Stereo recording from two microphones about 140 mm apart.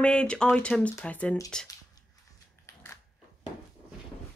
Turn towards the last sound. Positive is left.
turn(degrees=20)  # may be behind; listen again after turning